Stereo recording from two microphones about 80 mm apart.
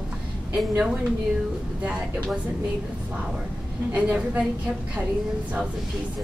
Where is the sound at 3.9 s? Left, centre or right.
Centre.